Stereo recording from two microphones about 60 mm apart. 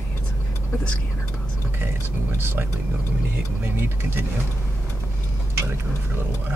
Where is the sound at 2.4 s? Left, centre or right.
Right.